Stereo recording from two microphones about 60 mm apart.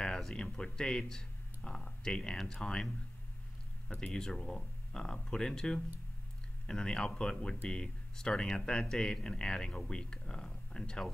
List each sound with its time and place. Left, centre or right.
0.2 s speech: centre
4.1 s speech: centre